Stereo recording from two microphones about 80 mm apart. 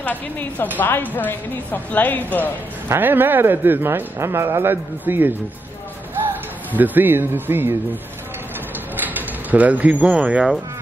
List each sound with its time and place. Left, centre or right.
0.0 s speech: left
2.9 s speech: right
6.7 s speech: right
8.9 s speech: right